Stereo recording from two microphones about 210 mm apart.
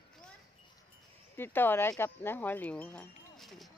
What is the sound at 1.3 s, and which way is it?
Speech, 10° left (ahead or behind).